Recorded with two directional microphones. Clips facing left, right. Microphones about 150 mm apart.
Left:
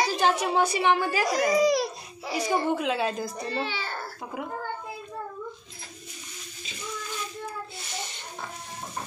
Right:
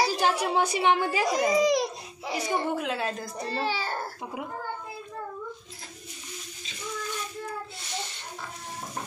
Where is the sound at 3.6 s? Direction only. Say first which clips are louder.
Right 3 dB; 40° right (ahead or behind).